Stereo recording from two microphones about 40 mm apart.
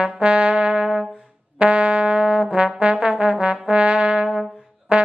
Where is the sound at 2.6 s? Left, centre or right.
Right.